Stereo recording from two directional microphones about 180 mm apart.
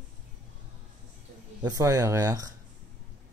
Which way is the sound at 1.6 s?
20° right (ahead or behind).